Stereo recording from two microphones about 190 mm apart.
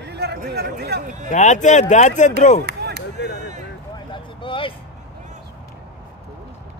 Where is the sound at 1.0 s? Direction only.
40° right (ahead or behind).